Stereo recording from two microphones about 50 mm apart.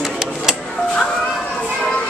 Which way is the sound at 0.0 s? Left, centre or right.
Centre.